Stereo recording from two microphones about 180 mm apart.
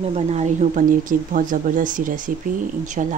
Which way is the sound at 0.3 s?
40° right (ahead or behind).